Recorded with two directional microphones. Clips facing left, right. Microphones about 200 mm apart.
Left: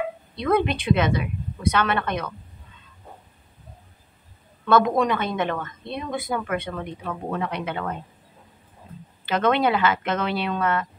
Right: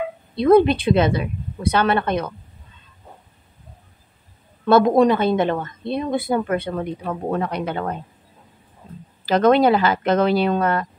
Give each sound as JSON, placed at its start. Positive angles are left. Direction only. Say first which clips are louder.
{"t": 0.4, "sound": "a woman's voice", "louder": "right 8 dB", "side_deg": -35}
{"t": 4.6, "sound": "a woman's voice", "louder": "right 5 dB", "side_deg": -35}
{"t": 9.2, "sound": "a woman's voice", "louder": "right 6 dB", "side_deg": -35}